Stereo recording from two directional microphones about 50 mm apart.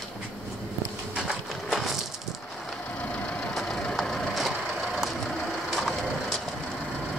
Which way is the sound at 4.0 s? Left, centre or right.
Centre.